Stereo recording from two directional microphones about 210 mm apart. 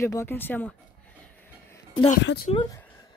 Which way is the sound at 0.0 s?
15° left (ahead or behind).